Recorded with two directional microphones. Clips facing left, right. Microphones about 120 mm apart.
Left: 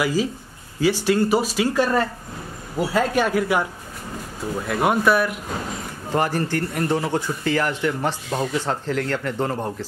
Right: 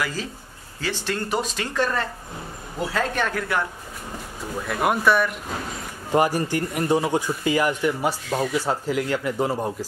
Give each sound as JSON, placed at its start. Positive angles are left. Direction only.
{"t": 0.0, "sound": "speech", "side_deg": 10}
{"t": 4.6, "sound": "speech", "side_deg": 0}
{"t": 6.1, "sound": "a man's voice", "side_deg": -15}